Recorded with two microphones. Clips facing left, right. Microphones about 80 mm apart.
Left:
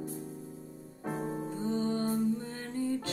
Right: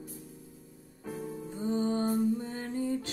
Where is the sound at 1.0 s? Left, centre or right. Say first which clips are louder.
Left 4 dB; left.